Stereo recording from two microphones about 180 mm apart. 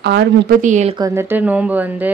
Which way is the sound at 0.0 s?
65° right (ahead or behind).